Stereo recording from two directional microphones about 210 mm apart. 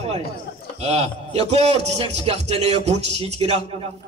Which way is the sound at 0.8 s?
30° right (ahead or behind).